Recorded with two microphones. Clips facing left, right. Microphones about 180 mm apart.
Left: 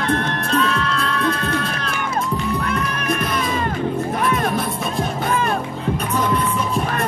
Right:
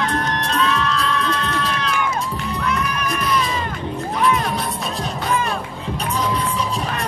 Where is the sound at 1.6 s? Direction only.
50° left (ahead or behind).